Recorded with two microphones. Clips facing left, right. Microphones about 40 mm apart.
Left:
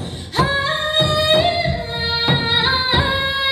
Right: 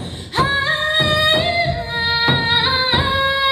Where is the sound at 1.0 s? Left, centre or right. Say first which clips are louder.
Left 1 dB; right.